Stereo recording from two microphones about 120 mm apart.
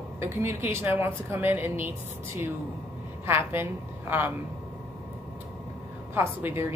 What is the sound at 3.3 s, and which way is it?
Speech, 20° right (ahead or behind).